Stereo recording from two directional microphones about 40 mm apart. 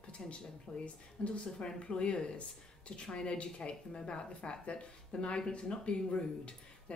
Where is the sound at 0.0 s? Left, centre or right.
Left.